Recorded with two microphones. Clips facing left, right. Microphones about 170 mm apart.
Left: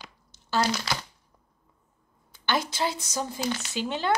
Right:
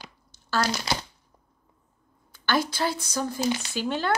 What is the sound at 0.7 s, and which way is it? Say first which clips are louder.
Speech: right 2 dB; 25° right (ahead or behind).